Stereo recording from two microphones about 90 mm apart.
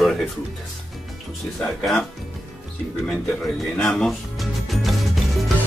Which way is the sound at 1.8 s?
Centre (ahead or behind).